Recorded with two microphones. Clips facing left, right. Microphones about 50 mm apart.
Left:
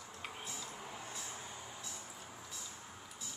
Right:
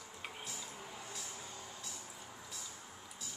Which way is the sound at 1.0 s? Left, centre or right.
Left.